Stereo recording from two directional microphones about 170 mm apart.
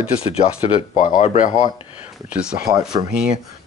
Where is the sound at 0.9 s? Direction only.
45° left (ahead or behind).